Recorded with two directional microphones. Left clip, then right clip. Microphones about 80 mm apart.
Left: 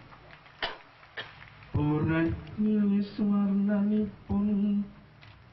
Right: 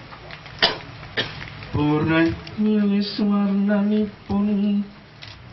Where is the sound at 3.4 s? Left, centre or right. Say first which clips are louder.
Right 8 dB; left.